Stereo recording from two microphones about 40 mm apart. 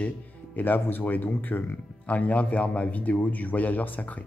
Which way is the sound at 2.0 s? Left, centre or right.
Left.